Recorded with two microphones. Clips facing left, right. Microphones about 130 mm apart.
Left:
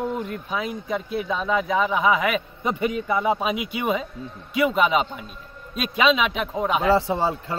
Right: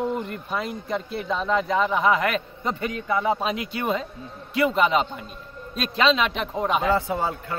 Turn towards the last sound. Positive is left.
turn(degrees=25)  # may be behind; listen again after turning